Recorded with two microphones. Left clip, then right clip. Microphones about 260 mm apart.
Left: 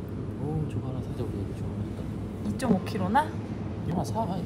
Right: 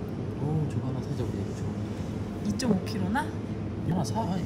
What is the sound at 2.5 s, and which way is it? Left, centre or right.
Speech, centre.